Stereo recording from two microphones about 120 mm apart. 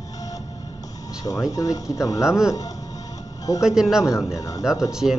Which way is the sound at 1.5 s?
30° left (ahead or behind).